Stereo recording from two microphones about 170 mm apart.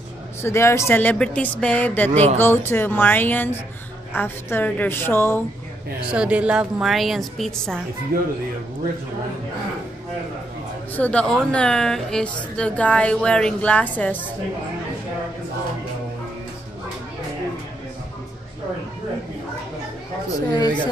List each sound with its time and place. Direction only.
0.4 s a woman's voice: 15° left (ahead or behind)
2.0 s speech: 40° right (ahead or behind)
2.3 s a woman's voice: 15° left (ahead or behind)
6.0 s a woman's voice: 5° right (ahead or behind)
8.1 s speech: 60° right (ahead or behind)
10.9 s a woman's voice: 10° left (ahead or behind)
20.2 s speech: 25° left (ahead or behind)